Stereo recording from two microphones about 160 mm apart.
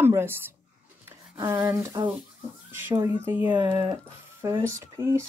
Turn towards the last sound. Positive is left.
turn(degrees=-15)  # may be behind; listen again after turning